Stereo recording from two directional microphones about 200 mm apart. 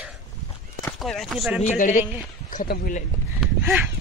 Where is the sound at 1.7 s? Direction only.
40° left (ahead or behind).